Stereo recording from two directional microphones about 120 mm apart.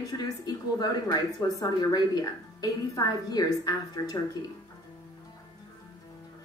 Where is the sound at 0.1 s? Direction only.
30° left (ahead or behind).